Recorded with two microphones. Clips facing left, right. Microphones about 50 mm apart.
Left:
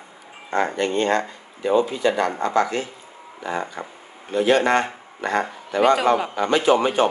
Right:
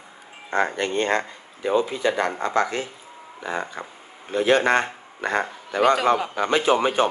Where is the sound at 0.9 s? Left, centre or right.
Right.